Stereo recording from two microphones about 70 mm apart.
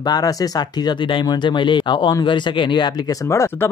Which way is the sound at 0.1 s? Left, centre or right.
Left.